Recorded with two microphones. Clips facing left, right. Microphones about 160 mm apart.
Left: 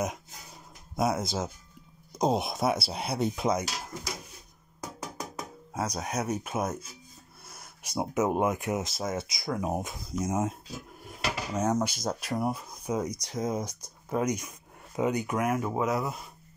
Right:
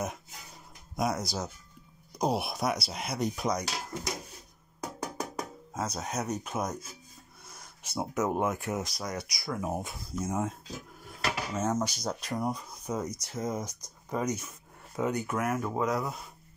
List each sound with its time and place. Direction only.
0.9 s speech: 25° left (ahead or behind)
5.8 s speech: 10° left (ahead or behind)
11.1 s dishes: 15° left (ahead or behind)
12.2 s speech: 10° left (ahead or behind)